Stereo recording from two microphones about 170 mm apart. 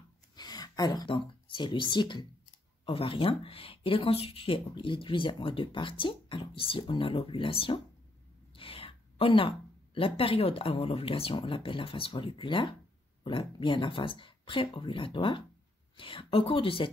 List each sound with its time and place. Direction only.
0.4 s speech: 25° left (ahead or behind)
8.5 s a sound: 35° left (ahead or behind)
9.9 s speech: 35° left (ahead or behind)